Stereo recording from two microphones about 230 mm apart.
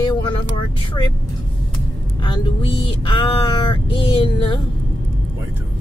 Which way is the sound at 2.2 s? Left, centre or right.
Left.